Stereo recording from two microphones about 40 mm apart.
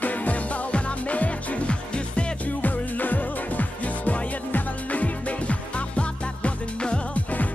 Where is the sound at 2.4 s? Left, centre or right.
Left.